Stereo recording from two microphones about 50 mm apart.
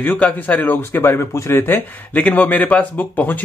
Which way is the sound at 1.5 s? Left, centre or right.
Left.